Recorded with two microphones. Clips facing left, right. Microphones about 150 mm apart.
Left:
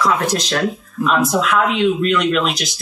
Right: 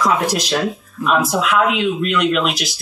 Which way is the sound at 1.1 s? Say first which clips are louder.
Even; 5° right (ahead or behind).